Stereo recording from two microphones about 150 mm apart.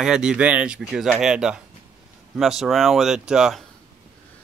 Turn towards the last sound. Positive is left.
turn(degrees=-5)  # may be behind; listen again after turning